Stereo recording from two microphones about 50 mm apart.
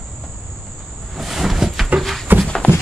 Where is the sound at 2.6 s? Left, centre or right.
Left.